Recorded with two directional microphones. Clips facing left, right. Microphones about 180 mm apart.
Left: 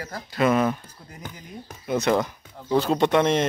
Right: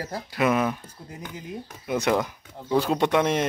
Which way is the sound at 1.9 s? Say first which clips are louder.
Left 2 dB; 10° right (ahead or behind).